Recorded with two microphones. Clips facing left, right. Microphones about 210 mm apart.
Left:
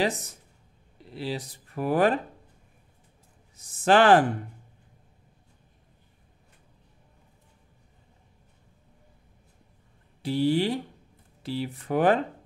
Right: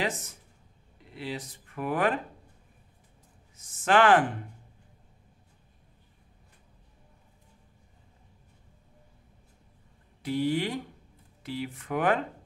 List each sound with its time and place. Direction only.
0.0 s speech: 35° left (ahead or behind)
3.5 s speech: 35° left (ahead or behind)
10.2 s speech: 30° left (ahead or behind)